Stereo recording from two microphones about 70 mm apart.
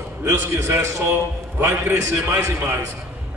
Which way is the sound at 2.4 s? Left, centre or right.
Right.